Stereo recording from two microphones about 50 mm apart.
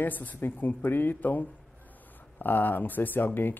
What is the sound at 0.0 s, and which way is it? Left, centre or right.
Speech, left.